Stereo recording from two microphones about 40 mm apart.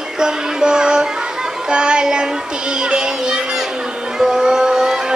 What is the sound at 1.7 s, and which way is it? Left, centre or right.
Music, right.